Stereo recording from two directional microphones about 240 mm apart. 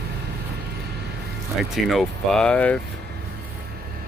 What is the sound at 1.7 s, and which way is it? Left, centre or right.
Speech, centre.